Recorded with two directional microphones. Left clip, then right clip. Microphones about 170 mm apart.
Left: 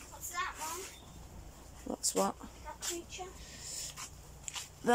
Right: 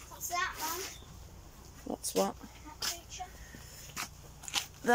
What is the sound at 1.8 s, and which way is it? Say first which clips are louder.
Speech: right 1 dB; centre (ahead or behind).